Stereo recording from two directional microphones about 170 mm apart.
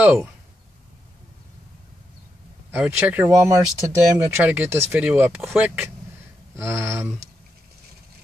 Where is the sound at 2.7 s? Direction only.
10° right (ahead or behind).